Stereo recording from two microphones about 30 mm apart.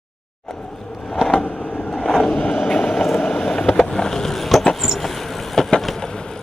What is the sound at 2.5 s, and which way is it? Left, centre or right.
Vehicle, left.